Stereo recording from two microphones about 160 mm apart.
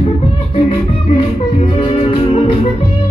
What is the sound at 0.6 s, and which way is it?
Music, 40° left (ahead or behind).